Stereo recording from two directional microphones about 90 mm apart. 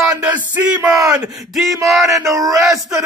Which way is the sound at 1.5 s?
Centre (ahead or behind).